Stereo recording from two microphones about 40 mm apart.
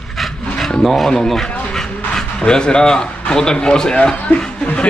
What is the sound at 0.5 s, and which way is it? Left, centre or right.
Rub, centre.